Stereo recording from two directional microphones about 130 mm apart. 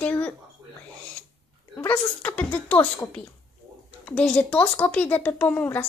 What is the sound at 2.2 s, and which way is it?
Speech, 10° left (ahead or behind).